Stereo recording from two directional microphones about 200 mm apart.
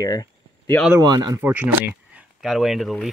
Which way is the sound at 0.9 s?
20° right (ahead or behind).